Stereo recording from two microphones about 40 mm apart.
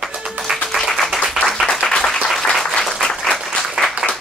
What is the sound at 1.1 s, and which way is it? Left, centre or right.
Applause, centre.